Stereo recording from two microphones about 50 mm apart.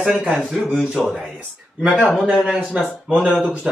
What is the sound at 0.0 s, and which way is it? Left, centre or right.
Speech, centre.